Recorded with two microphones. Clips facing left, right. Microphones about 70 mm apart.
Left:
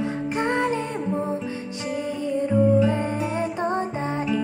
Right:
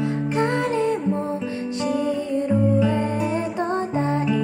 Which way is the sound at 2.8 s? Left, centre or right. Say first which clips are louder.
Right 2 dB; centre.